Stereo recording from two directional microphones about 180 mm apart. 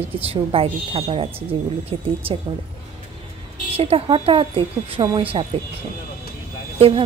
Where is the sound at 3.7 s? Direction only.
35° right (ahead or behind).